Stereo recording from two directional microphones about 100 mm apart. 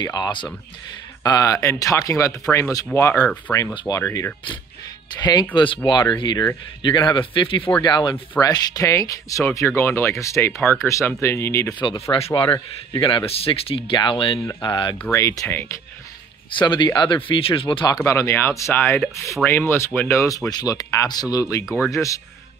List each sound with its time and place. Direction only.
0.0 s speech: 45° left (ahead or behind); by 3.3 s 30° left (ahead or behind)
3.5 s speech: 10° left (ahead or behind)
5.2 s speech: 45° left (ahead or behind)
7.8 s speech: 45° left (ahead or behind); by 11.7 s 25° left (ahead or behind)
11.8 s speech: 50° left (ahead or behind)
14.6 s speech: 50° left (ahead or behind)
15.0 s speech: 30° left (ahead or behind)
15.4 s speech: 20° left (ahead or behind)
16.4 s speech: 55° left (ahead or behind)
18.0 s speech: 25° left (ahead or behind)
21.6 s speech: 5° right (ahead or behind)
21.9 s speech: 30° left (ahead or behind)